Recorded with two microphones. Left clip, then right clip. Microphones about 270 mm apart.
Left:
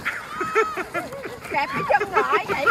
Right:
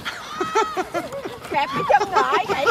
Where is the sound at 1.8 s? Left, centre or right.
Right.